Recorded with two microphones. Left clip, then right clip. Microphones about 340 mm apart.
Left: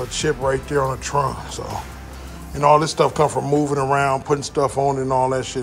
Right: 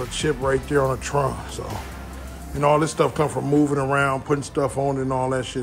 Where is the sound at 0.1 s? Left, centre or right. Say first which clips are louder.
Left 1 dB; centre.